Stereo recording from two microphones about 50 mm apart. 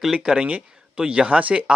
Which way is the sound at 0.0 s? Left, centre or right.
Centre.